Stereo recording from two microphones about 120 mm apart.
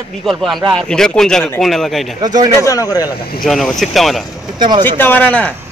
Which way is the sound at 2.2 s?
35° right (ahead or behind).